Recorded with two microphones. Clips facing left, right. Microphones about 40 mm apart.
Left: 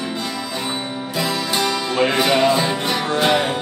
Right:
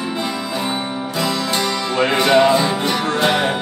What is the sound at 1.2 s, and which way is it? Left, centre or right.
Music, centre.